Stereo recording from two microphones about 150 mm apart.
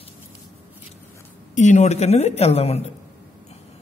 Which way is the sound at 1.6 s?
50° left (ahead or behind).